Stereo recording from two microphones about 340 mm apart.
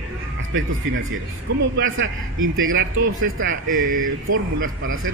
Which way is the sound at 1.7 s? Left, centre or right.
Right.